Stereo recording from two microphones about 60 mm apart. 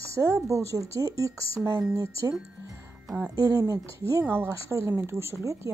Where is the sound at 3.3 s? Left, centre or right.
Right.